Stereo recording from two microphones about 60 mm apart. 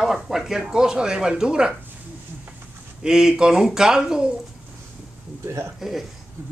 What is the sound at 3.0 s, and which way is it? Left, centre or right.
Speech, centre.